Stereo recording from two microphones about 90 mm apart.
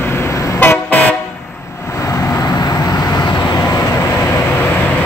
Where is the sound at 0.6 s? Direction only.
20° left (ahead or behind).